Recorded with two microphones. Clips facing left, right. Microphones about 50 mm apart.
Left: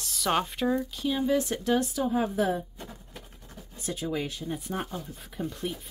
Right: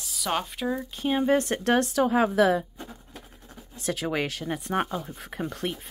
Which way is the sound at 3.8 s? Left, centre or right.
Right.